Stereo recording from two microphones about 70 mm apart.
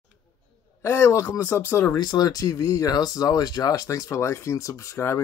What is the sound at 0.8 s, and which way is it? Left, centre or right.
Speech, left.